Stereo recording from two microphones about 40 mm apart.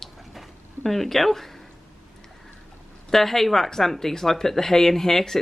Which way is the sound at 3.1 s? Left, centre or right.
Centre.